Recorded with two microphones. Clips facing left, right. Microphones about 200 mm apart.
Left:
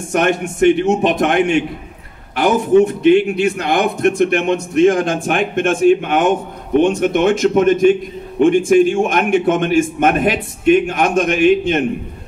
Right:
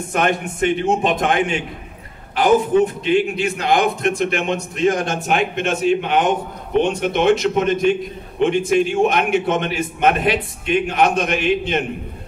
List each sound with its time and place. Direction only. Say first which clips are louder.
0.1 s a man's voice: left 4 dB; 45° left (ahead or behind)
1.2 s a man's voice: left 5 dB; 70° left (ahead or behind)
2.8 s a man's voice: left 6 dB; 50° left (ahead or behind)